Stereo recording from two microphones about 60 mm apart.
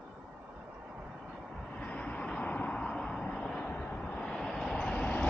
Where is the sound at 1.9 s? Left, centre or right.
Centre.